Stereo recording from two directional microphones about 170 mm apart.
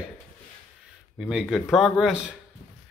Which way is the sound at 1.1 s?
Centre (ahead or behind).